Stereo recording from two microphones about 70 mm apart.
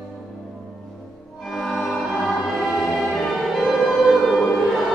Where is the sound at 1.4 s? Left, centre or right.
Centre.